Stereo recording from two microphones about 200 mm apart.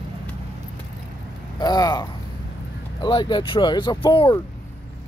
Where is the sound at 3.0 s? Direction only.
25° left (ahead or behind).